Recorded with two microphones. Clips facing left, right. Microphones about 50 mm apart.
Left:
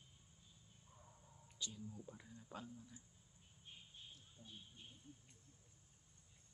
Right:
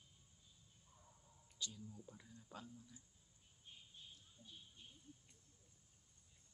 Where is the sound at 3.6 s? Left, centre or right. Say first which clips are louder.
Left 1 dB; left.